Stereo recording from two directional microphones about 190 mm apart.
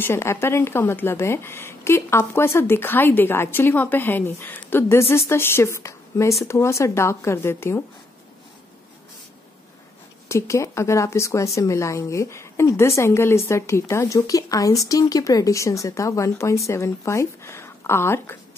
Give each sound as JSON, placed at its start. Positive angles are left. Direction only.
{"t": 0.0, "sound": "speech", "side_deg": 15}
{"t": 10.2, "sound": "speech", "side_deg": 15}